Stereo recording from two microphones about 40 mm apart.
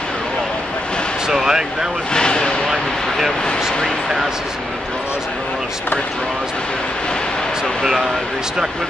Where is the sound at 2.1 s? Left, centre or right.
Left.